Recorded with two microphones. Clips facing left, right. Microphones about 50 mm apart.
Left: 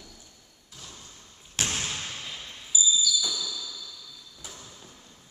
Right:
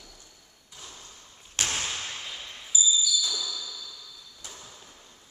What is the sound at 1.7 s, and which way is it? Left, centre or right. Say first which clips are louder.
Basketball bounce: even; centre.